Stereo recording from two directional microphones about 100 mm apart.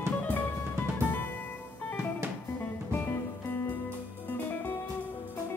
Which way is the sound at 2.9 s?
25° left (ahead or behind).